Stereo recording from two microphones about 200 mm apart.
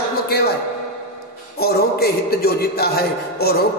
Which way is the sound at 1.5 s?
50° left (ahead or behind).